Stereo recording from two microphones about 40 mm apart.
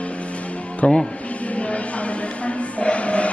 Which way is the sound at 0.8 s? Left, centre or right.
Left.